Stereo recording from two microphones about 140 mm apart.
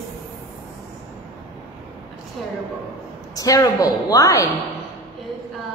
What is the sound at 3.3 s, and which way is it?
A woman's voice, 25° left (ahead or behind).